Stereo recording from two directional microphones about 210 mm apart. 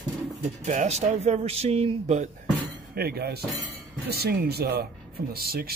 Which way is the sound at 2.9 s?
50° right (ahead or behind).